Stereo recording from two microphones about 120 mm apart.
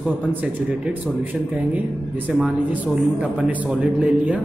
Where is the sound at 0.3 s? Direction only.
15° right (ahead or behind).